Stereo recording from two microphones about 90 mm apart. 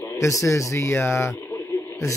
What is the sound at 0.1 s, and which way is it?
Speech, 35° left (ahead or behind).